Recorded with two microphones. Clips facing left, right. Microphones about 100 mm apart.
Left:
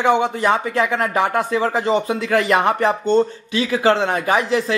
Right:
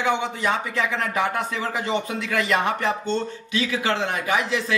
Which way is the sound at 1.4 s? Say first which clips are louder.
Left 7 dB; 35° left (ahead or behind).